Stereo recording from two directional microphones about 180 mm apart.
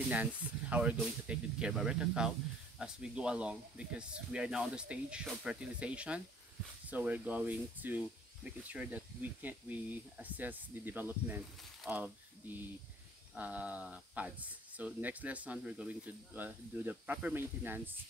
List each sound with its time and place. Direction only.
0.1 s speech: 5° right (ahead or behind)